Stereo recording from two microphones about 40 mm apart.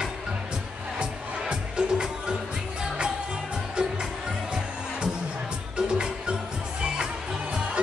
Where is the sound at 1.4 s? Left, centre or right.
Right.